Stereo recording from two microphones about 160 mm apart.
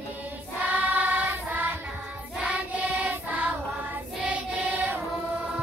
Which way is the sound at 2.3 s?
5° right (ahead or behind).